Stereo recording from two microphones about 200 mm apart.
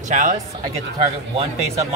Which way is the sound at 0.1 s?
40° right (ahead or behind).